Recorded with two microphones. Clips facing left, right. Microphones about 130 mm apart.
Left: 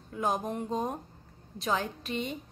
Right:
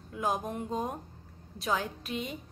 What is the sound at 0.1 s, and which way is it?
A woman's voice, centre (ahead or behind).